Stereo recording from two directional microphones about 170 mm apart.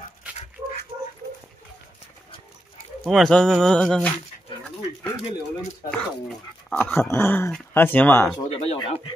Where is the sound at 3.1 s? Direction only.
5° left (ahead or behind).